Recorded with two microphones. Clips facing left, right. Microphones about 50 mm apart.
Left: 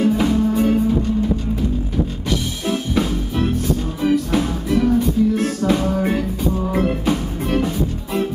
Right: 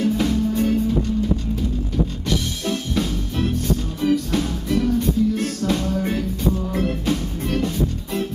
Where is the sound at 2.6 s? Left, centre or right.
Centre.